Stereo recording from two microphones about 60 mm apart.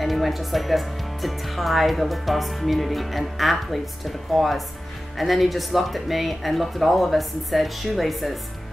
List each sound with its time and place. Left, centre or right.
0.0 s speech: centre